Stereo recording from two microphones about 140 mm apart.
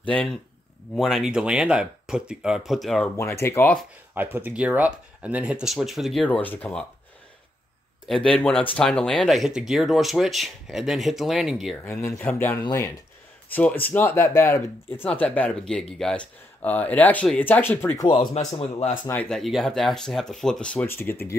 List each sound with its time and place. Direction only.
0.0 s speech: 10° left (ahead or behind)
3.2 s speech: 20° left (ahead or behind)
4.1 s speech: 10° right (ahead or behind)
6.2 s speech: 10° left (ahead or behind)
8.1 s speech: 5° left (ahead or behind)
11.8 s speech: 20° left (ahead or behind)
17.9 s speech: 30° left (ahead or behind)
18.6 s speech: 50° left (ahead or behind)
19.2 s speech: centre (ahead or behind); by 21.4 s 15° left (ahead or behind)